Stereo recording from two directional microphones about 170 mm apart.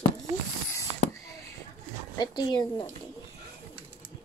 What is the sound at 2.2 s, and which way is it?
Speech, 25° left (ahead or behind).